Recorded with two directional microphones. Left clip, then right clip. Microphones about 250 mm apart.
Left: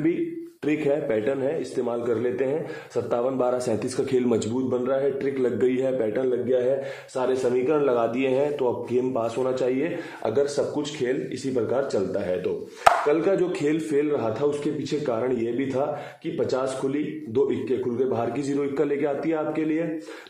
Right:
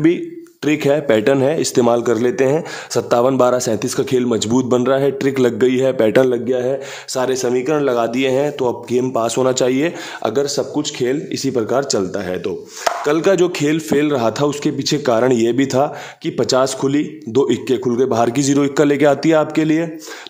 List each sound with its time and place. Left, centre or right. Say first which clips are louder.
0.7 s a man's voice: right 9 dB; right
4.6 s speech: right 8 dB; right
5.6 s a man's voice: right 9 dB; right